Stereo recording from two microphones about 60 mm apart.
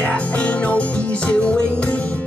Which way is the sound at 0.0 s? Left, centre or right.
Left.